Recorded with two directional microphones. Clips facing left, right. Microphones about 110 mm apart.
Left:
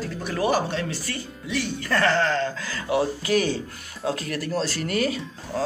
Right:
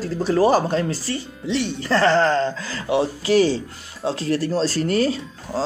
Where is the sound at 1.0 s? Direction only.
25° right (ahead or behind).